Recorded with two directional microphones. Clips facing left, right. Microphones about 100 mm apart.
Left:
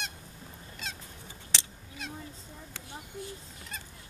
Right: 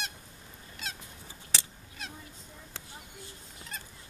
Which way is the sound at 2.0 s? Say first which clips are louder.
Left 2 dB; centre (ahead or behind).